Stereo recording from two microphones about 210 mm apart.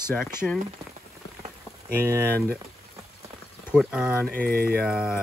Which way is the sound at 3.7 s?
5° right (ahead or behind).